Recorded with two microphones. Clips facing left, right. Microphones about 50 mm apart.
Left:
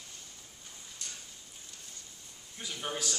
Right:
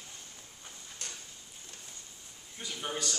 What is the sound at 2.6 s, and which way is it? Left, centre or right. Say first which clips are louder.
Speech: even; centre.